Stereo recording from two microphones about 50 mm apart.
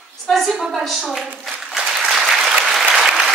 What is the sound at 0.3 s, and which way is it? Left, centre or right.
Speech, centre.